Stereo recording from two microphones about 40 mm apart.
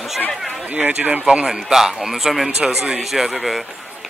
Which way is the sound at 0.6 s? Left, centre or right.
Right.